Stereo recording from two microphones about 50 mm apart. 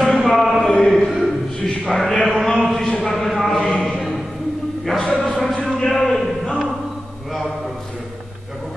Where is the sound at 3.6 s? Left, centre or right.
Centre.